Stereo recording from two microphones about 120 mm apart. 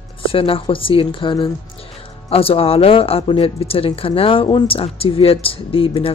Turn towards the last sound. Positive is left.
turn(degrees=50)  # may be behind; listen again after turning